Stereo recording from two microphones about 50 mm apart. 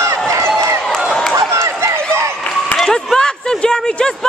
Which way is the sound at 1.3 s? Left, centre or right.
Right.